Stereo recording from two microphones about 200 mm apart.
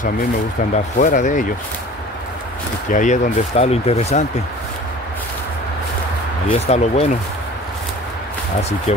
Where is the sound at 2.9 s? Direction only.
40° left (ahead or behind).